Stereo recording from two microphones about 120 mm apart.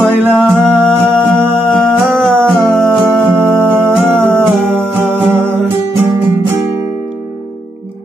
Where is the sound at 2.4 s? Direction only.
5° left (ahead or behind).